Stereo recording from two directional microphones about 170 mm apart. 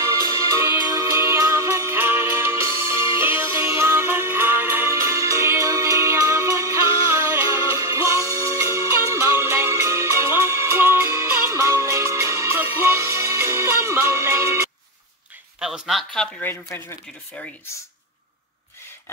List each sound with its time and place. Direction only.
0.0 s music: 15° right (ahead or behind)
15.6 s a sound: centre (ahead or behind)
17.4 s speech: 10° left (ahead or behind)